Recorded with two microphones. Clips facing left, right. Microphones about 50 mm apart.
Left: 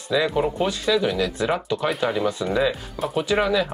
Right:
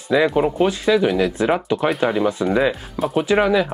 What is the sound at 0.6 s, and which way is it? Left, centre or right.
Speech, centre.